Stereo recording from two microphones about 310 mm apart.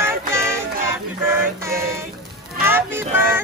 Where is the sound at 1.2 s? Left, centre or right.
Centre.